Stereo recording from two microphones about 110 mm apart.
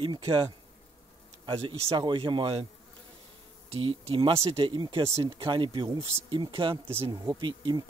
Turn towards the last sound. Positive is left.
turn(degrees=-40)  # may be behind; listen again after turning